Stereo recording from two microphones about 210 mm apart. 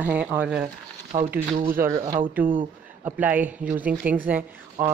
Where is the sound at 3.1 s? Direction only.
10° right (ahead or behind).